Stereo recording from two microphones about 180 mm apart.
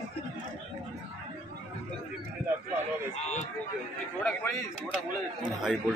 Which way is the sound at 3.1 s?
40° left (ahead or behind).